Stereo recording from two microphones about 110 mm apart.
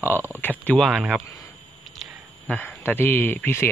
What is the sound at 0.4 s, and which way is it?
Speech, 15° left (ahead or behind).